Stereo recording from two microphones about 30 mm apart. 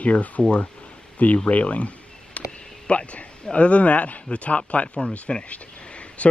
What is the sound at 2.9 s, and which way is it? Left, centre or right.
Speech, left.